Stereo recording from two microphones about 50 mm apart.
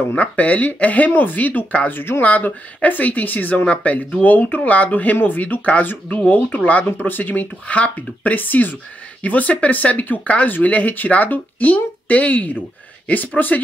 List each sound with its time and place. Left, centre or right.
0.1 s speech: left
1.9 s speech: left
2.2 s speech: left
7.6 s speech: left